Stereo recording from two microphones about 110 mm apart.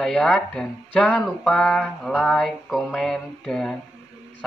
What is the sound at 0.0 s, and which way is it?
A man's voice, 5° left (ahead or behind).